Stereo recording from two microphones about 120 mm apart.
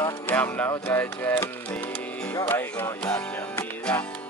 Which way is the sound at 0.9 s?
15° left (ahead or behind).